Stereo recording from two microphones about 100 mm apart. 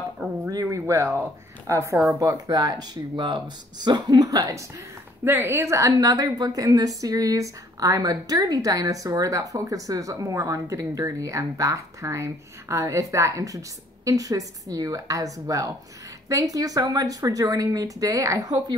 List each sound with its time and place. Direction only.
0.5 s a woman's voice: 35° right (ahead or behind)
5.2 s a woman's voice: 20° right (ahead or behind); by 18.8 s 40° right (ahead or behind)